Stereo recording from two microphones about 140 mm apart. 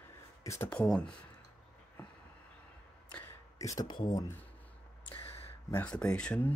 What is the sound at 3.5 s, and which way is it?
Speech, 25° left (ahead or behind).